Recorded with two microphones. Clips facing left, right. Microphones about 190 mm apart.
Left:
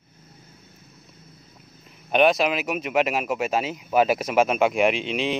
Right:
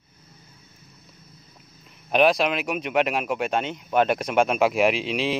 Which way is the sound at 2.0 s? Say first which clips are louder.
Even; centre (ahead or behind).